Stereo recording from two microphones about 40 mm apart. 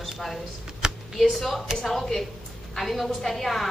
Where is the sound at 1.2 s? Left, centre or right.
Centre.